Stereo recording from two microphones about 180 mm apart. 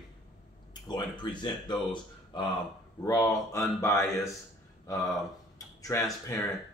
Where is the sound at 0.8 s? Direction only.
25° left (ahead or behind).